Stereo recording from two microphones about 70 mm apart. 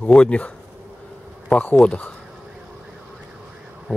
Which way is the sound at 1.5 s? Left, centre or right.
Centre.